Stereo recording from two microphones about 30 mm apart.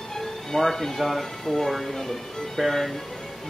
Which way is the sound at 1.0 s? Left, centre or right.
Centre.